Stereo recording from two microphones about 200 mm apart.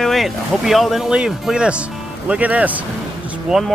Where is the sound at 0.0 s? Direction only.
Centre (ahead or behind).